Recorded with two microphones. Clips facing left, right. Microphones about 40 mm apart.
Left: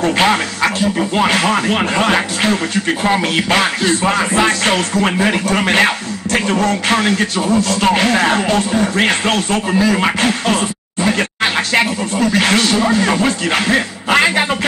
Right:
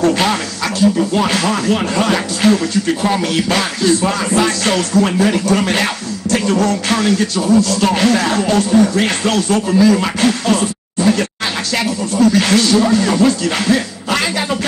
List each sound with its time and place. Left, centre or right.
0.0 s music: left